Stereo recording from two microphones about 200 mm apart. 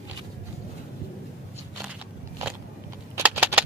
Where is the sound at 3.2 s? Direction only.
10° right (ahead or behind).